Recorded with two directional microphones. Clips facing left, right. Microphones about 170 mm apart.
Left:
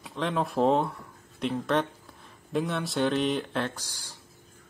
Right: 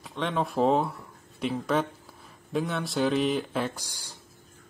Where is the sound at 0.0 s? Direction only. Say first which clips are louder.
Even; centre (ahead or behind).